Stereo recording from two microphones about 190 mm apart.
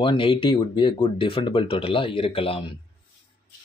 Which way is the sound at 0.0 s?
25° left (ahead or behind).